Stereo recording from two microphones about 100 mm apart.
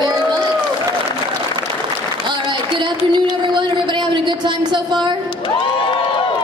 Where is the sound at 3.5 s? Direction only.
50° right (ahead or behind).